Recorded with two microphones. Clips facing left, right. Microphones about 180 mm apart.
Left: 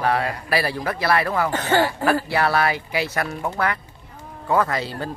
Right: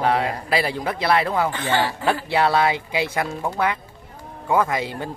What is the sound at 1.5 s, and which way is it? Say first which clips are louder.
Speech: left 3 dB; 45° left (ahead or behind).